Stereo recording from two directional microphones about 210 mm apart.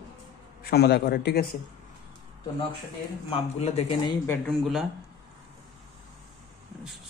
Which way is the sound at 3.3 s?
30° left (ahead or behind).